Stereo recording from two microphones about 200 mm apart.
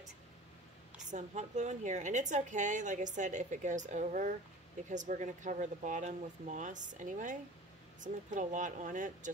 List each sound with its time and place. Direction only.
0.9 s a woman's voice: 35° right (ahead or behind)